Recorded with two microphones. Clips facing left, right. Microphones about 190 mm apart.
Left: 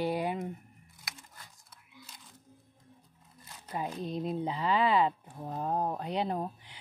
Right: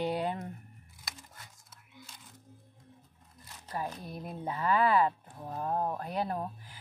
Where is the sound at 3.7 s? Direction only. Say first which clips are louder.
Left 3 dB; 20° left (ahead or behind).